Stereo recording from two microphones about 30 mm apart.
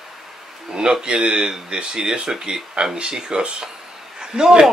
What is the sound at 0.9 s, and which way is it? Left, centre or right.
Speech, right.